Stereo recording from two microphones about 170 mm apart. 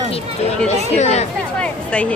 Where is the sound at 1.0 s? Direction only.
40° left (ahead or behind).